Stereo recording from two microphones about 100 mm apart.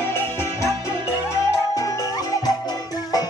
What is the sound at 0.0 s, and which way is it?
Music, 25° left (ahead or behind).